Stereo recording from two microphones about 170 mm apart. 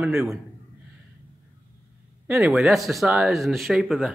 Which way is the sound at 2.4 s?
Centre (ahead or behind).